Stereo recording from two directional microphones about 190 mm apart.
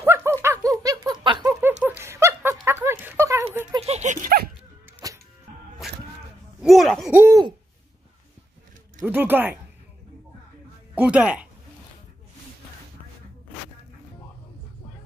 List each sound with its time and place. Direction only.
0.0 s a sound: 15° right (ahead or behind)
1.8 s snicker: 10° right (ahead or behind)
3.7 s dog: 35° right (ahead or behind)
6.6 s a sound: centre (ahead or behind)
7.2 s hoot: 10° right (ahead or behind)
9.0 s speech: 10° right (ahead or behind)
11.0 s speech: 5° right (ahead or behind)